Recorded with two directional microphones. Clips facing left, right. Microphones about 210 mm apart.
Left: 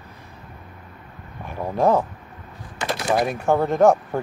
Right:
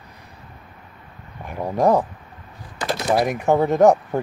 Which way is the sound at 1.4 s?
15° right (ahead or behind).